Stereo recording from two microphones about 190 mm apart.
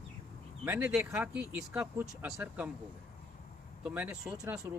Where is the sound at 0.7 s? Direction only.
10° right (ahead or behind).